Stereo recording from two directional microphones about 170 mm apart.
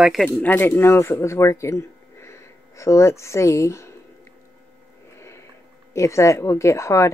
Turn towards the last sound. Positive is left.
turn(degrees=15)  # may be behind; listen again after turning